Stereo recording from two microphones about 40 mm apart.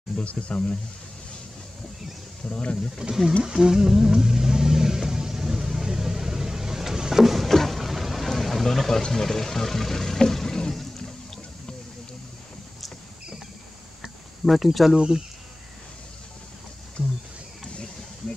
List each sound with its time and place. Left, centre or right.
0.2 s speech: left
2.5 s speech: left
3.0 s speech: centre
3.6 s vehicle: centre
7.4 s boat: centre
8.6 s speech: centre
14.4 s speech: centre
15.0 s speech: centre